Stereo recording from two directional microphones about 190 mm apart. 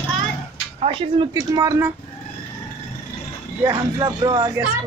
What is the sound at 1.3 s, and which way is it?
Speech, 20° right (ahead or behind).